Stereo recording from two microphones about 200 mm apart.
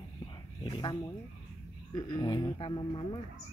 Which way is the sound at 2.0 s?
20° left (ahead or behind).